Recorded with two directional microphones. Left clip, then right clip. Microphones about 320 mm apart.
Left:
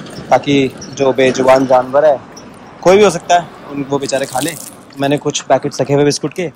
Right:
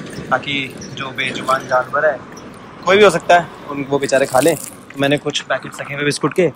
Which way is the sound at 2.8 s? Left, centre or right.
Centre.